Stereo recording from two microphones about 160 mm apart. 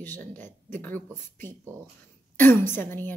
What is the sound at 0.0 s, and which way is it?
Speech, 10° left (ahead or behind).